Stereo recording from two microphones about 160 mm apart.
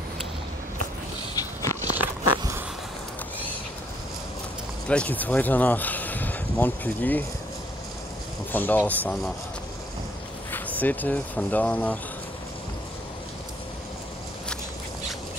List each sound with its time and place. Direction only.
1.3 s biting: 20° left (ahead or behind)
4.8 s speech: 10° left (ahead or behind)
8.5 s speech: 10° left (ahead or behind)
10.5 s speech: 10° left (ahead or behind)